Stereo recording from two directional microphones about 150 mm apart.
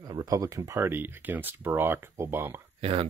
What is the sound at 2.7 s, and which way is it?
Speech, 40° right (ahead or behind).